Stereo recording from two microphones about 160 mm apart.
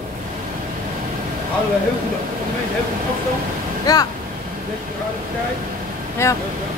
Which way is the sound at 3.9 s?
20° left (ahead or behind).